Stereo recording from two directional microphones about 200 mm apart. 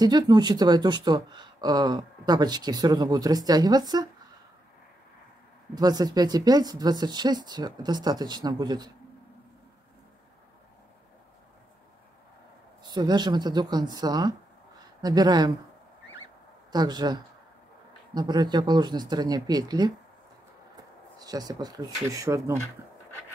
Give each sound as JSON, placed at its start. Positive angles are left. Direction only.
{"t": 0.0, "sound": "speech", "side_deg": -20}
{"t": 5.8, "sound": "speech", "side_deg": -20}
{"t": 12.8, "sound": "speech", "side_deg": -20}
{"t": 16.7, "sound": "speech", "side_deg": -20}
{"t": 21.2, "sound": "speech", "side_deg": -20}